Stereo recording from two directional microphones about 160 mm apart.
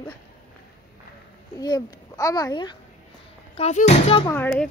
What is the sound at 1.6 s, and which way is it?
Speech, 25° left (ahead or behind).